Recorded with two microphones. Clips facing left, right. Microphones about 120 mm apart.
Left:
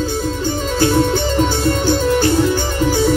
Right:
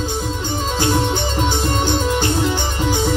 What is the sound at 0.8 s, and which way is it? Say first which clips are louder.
Music: left 5 dB; 15° right (ahead or behind).